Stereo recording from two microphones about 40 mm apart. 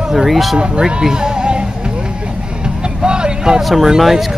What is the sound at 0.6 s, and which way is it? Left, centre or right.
Music, right.